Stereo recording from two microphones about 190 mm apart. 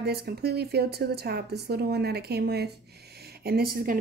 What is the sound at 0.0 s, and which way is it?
Speech, 55° right (ahead or behind).